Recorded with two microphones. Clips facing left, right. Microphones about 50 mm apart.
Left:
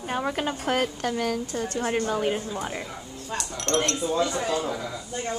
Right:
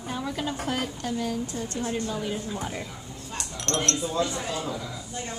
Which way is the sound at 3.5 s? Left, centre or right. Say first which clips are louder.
Left 2 dB; centre.